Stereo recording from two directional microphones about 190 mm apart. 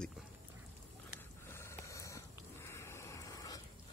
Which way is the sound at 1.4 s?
15° left (ahead or behind).